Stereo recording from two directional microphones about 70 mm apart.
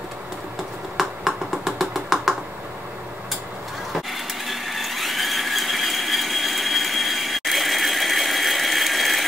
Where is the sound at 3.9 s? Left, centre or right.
Centre.